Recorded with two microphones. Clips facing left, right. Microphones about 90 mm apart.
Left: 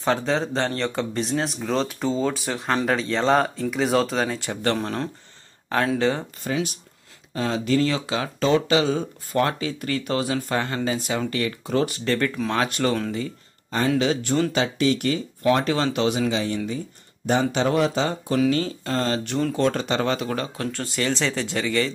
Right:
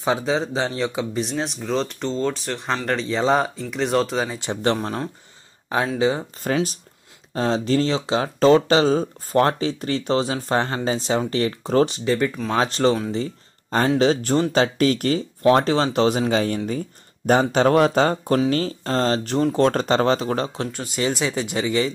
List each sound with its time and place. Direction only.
0.0 s speech: 5° right (ahead or behind)
4.3 s speech: 20° right (ahead or behind)
5.9 s speech: 10° right (ahead or behind)
6.4 s speech: 40° right (ahead or behind)
11.9 s speech: 15° right (ahead or behind)
12.5 s speech: 30° right (ahead or behind)
13.1 s a sound: 30° right (ahead or behind)
13.8 s speech: 35° right (ahead or behind); by 18.4 s 50° right (ahead or behind)
18.5 s speech: 40° right (ahead or behind)
20.6 s speech: 15° right (ahead or behind)